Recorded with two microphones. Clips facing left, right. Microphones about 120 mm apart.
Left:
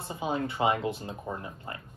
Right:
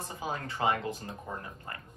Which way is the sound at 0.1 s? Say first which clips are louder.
Left 7 dB; 20° left (ahead or behind).